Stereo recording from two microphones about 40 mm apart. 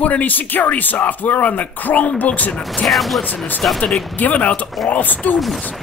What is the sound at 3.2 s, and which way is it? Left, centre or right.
A man's voice, left.